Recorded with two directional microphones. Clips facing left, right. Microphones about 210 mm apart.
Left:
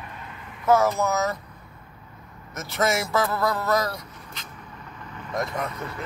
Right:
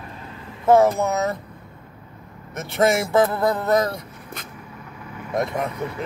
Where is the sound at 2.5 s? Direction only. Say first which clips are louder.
Right 5 dB; 55° right (ahead or behind).